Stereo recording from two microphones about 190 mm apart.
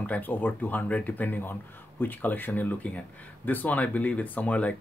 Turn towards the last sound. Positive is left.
turn(degrees=5)  # may be behind; listen again after turning